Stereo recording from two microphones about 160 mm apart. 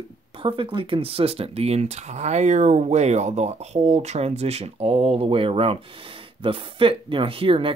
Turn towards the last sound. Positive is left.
turn(degrees=-35)  # may be behind; listen again after turning